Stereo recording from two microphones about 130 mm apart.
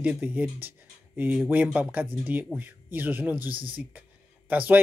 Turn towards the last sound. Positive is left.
turn(degrees=-10)  # may be behind; listen again after turning